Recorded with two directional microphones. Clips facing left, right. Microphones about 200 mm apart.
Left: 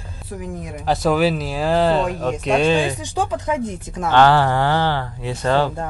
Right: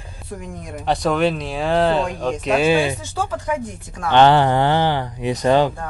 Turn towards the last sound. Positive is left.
turn(degrees=-15)  # may be behind; listen again after turning